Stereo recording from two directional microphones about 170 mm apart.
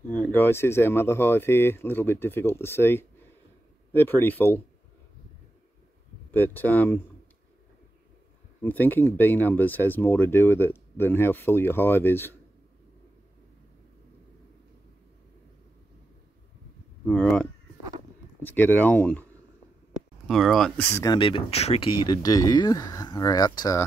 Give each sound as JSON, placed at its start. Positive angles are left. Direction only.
{"t": 0.1, "sound": "speech", "side_deg": 10}
{"t": 6.3, "sound": "speech", "side_deg": 10}
{"t": 8.6, "sound": "speech", "side_deg": 10}
{"t": 17.0, "sound": "speech", "side_deg": 5}
{"t": 20.2, "sound": "speech", "side_deg": 0}
{"t": 20.8, "sound": "speech", "side_deg": 15}
{"t": 21.2, "sound": "speech", "side_deg": 35}